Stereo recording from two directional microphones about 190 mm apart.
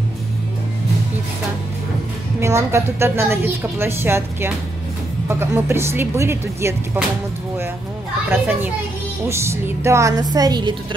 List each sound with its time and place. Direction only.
2.4 s a woman's voice: 15° right (ahead or behind)
8.3 s a woman's voice: 10° right (ahead or behind)